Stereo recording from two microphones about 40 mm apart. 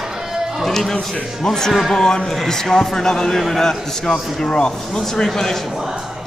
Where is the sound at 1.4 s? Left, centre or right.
Centre.